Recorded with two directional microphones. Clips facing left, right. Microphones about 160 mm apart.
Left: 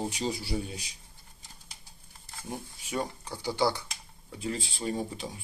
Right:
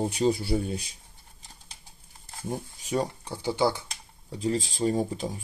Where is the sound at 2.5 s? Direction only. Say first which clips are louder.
Right 6 dB; 40° right (ahead or behind).